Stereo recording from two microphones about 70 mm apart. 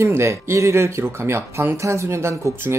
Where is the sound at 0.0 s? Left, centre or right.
Right.